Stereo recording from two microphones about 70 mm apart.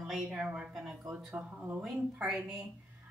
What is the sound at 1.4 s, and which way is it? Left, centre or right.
Speech, right.